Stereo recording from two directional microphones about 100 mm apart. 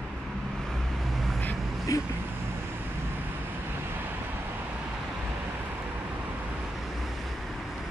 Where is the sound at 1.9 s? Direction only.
35° left (ahead or behind).